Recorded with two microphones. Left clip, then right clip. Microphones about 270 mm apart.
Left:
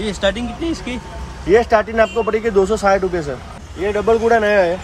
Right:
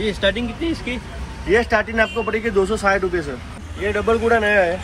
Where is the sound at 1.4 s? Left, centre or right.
Left.